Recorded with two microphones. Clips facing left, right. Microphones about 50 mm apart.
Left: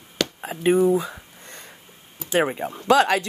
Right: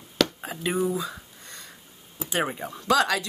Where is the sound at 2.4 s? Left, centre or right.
Left.